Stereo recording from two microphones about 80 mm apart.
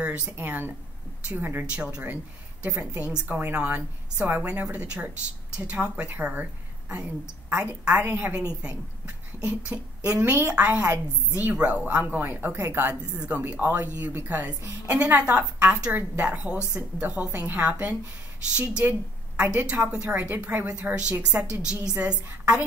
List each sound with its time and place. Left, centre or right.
0.0 s speech: centre
1.9 s a woman's voice: centre; by 12.9 s right
13.2 s a woman's voice: centre